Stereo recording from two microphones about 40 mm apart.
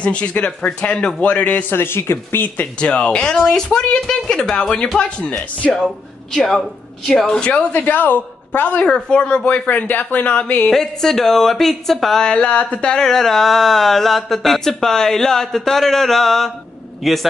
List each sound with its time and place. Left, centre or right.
0.0 s a man's voice: left
1.7 s speech: left
2.6 s speech: left
6.3 s speech: centre
7.3 s speech: left
7.7 s a woman's voice: left
8.7 s speech: left
9.7 s speech: left
10.3 s a man's voice: left
10.7 s speech: centre
12.2 s speech: left
12.9 s a man's voice: centre